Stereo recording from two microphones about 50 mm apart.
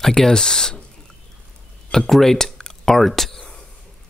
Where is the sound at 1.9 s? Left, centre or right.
Centre.